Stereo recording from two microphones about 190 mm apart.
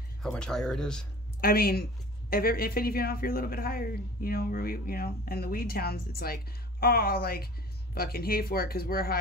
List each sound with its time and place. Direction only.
0.2 s speech: 5° left (ahead or behind)
1.4 s a woman's voice: 55° left (ahead or behind)